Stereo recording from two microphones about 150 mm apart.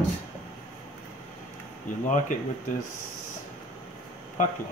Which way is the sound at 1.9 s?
60° left (ahead or behind).